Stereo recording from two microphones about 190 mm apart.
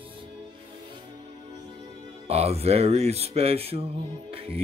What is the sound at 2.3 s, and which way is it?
Mantra, 35° right (ahead or behind).